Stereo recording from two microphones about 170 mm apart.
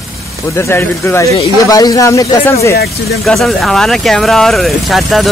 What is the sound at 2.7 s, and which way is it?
Speech, 65° left (ahead or behind).